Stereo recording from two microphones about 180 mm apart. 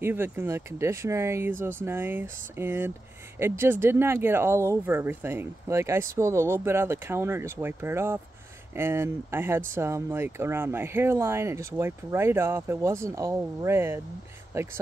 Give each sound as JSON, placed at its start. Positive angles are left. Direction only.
{"t": 0.0, "sound": "speech", "side_deg": -10}